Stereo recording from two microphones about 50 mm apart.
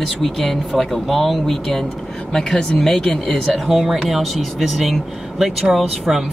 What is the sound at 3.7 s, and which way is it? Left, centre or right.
Speech, centre.